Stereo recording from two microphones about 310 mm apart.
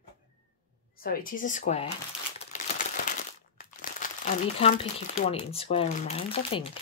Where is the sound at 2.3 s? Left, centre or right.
Left.